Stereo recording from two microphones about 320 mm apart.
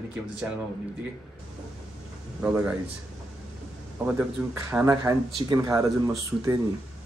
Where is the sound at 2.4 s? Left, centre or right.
Centre.